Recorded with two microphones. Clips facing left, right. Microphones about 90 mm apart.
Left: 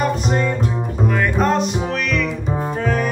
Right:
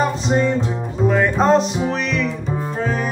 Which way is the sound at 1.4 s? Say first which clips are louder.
Right 3 dB; 30° right (ahead or behind).